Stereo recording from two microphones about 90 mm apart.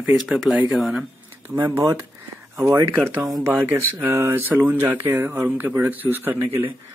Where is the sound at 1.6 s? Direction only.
30° right (ahead or behind).